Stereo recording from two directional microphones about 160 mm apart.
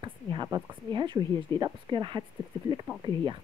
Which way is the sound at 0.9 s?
30° right (ahead or behind).